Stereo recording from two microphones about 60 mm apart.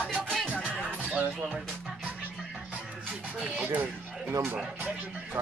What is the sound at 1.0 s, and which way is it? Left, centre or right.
Music, right.